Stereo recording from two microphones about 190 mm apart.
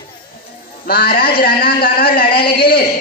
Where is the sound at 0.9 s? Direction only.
55° left (ahead or behind).